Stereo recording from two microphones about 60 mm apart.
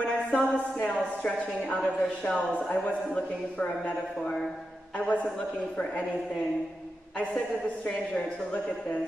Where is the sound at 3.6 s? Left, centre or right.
Centre.